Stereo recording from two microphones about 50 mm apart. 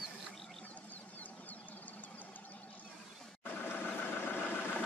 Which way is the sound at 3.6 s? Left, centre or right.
Left.